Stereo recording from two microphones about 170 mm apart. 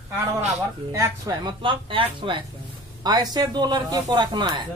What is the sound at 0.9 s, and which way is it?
Speech, 20° right (ahead or behind).